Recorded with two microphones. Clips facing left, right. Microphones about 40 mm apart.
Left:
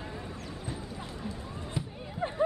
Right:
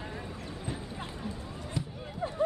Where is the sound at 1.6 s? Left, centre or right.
Left.